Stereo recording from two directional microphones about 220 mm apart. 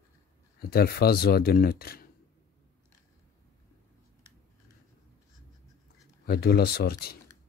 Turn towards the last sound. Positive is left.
turn(degrees=45)  # may be behind; listen again after turning